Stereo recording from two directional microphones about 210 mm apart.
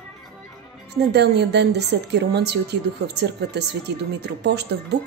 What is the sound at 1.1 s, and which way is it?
A woman's voice, 55° right (ahead or behind).